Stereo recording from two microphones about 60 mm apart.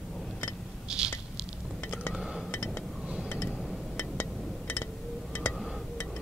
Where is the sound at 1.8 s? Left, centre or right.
Left.